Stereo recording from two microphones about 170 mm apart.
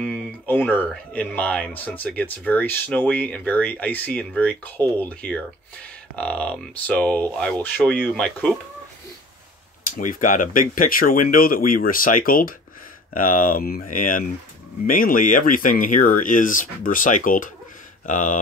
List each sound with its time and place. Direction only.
0.0 s speech: 10° left (ahead or behind)
9.9 s speech: 50° left (ahead or behind)